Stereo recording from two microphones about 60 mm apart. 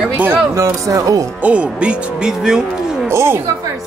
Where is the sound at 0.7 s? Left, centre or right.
Right.